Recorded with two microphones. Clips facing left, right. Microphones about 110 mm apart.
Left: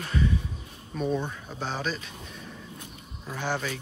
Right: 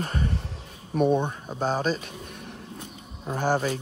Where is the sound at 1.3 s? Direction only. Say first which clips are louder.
Right 7 dB; 40° right (ahead or behind); by 2.5 s 55° right (ahead or behind).